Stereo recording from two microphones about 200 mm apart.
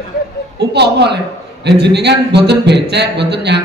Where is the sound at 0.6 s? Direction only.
55° right (ahead or behind).